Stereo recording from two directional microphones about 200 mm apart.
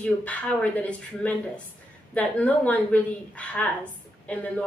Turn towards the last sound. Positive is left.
turn(degrees=5)  # may be behind; listen again after turning